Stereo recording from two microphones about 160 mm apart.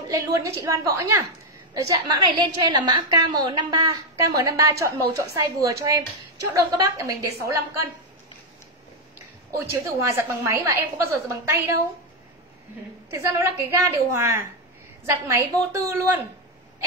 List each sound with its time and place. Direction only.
0.1 s a woman's voice: 20° right (ahead or behind)
9.6 s a woman's voice: 20° right (ahead or behind)
13.1 s a woman's voice: 20° right (ahead or behind)